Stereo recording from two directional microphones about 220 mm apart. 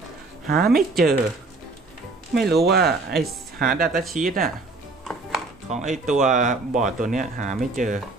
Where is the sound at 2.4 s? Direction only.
45° right (ahead or behind).